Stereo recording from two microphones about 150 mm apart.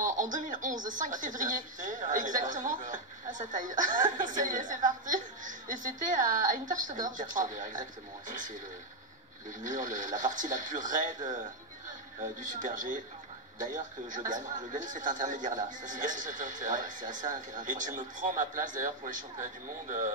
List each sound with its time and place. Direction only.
0.0 s speech: 60° right (ahead or behind)
9.5 s speech: 55° right (ahead or behind)
12.2 s speech: 60° right (ahead or behind)